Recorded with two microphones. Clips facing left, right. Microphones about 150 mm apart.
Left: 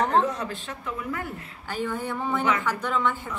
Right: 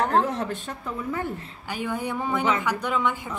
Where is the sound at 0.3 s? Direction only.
50° right (ahead or behind).